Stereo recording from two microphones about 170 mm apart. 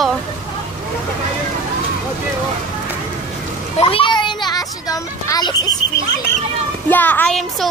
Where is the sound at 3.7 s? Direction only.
30° left (ahead or behind).